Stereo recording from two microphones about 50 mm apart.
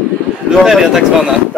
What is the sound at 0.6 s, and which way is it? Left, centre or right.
Speech, centre.